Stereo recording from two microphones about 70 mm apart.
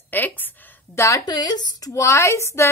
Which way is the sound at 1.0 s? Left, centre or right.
Left.